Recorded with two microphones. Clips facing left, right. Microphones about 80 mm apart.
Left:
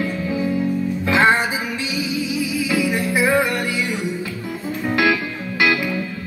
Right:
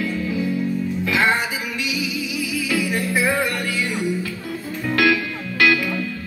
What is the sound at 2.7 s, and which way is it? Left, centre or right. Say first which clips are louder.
Music: left 1 dB; centre.